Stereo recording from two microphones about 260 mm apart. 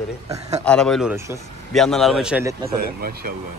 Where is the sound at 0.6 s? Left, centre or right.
Centre.